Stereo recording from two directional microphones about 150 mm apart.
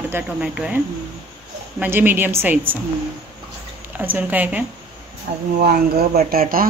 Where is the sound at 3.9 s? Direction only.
10° right (ahead or behind).